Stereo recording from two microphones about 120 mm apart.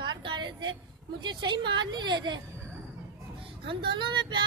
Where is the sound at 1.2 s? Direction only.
40° right (ahead or behind).